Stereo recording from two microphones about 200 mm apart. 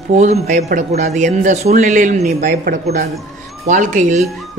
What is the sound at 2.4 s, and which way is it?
Speech, 45° right (ahead or behind).